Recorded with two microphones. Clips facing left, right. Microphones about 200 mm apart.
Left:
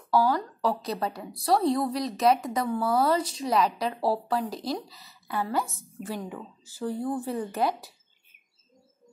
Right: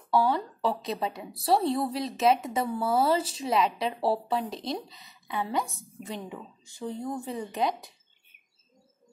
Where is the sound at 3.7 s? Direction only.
25° right (ahead or behind).